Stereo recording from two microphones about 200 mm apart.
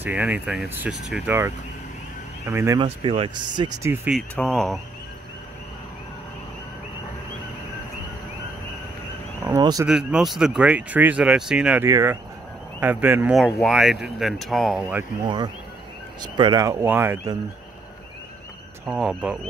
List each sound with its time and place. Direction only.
0.0 s speech: 5° right (ahead or behind)
2.8 s speech: 25° right (ahead or behind)
4.1 s speech: centre (ahead or behind)
9.4 s speech: 20° right (ahead or behind)
9.8 s speech: 5° right (ahead or behind)
15.2 s speech: 20° right (ahead or behind)
18.9 s speech: 5° right (ahead or behind)